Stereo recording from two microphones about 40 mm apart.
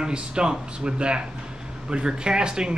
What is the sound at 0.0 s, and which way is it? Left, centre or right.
Speech, right.